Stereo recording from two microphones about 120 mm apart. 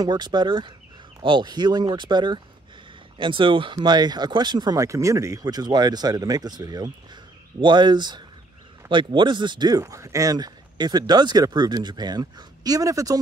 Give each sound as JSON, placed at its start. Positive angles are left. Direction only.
{"t": 0.0, "sound": "speech", "side_deg": -35}